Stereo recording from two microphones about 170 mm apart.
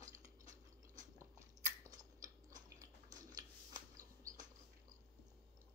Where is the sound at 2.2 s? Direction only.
20° right (ahead or behind).